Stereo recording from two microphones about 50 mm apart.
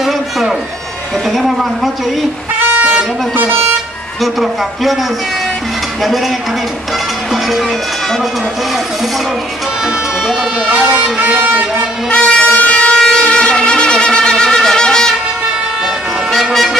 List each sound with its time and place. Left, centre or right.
0.0 s music: centre
1.3 s speech: centre
2.8 s speech: right
4.2 s speech: centre
6.0 s speech: centre
10.7 s speech: right
12.1 s shofar: left
16.3 s vehicle: centre